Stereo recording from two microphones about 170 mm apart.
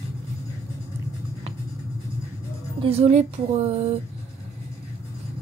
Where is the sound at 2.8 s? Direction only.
40° right (ahead or behind).